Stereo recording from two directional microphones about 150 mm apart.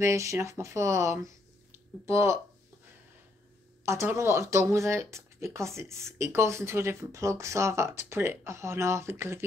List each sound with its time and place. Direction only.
0.0 s speech: 20° right (ahead or behind)
3.8 s speech: 20° right (ahead or behind)